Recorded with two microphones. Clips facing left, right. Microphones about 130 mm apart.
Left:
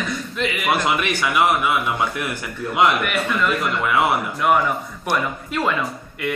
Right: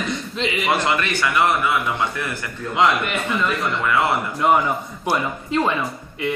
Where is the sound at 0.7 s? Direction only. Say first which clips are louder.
Left 1 dB; 10° left (ahead or behind).